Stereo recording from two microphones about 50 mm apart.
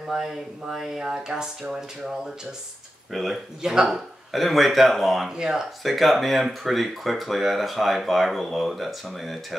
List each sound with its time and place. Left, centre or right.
0.1 s speech: centre
3.1 s speech: centre
5.4 s speech: centre
5.9 s speech: centre